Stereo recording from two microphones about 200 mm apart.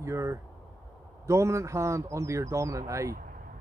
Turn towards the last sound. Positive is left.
turn(degrees=-15)  # may be behind; listen again after turning